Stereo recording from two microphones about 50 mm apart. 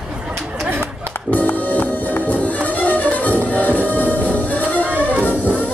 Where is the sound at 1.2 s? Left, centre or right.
Left.